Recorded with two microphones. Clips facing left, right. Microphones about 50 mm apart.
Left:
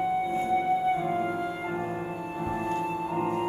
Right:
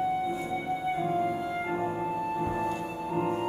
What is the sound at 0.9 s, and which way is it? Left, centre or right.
Music, centre.